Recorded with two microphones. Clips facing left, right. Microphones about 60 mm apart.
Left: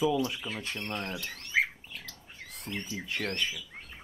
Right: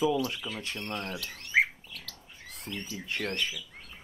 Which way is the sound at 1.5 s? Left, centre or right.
Right.